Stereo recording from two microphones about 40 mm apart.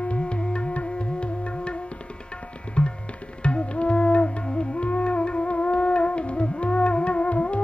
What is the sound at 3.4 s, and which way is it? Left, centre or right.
Music, left.